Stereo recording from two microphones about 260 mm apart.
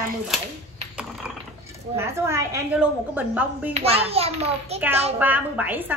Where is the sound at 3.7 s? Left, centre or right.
Right.